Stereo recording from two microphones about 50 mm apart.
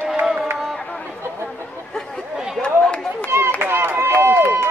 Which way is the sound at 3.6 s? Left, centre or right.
Right.